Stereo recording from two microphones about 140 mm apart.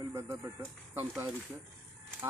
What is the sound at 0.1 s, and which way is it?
Speech, 20° right (ahead or behind).